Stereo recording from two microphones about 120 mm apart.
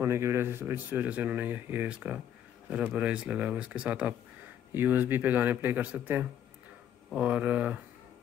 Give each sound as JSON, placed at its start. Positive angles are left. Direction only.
{"t": 0.0, "sound": "a man's voice", "side_deg": -25}